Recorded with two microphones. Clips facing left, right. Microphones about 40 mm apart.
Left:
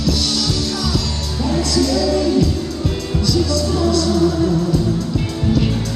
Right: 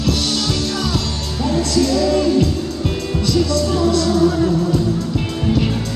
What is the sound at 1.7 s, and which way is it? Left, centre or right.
Music, right.